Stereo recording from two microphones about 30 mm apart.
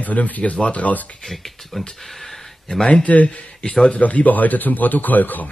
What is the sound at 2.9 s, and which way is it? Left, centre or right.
Speech, left.